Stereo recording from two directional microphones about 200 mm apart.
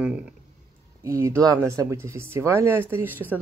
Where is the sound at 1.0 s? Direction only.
15° right (ahead or behind).